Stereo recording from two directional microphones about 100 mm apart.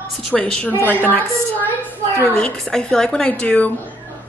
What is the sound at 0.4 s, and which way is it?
Speech, 10° left (ahead or behind).